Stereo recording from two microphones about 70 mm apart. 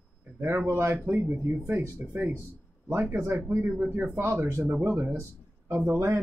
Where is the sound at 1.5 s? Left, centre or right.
Right.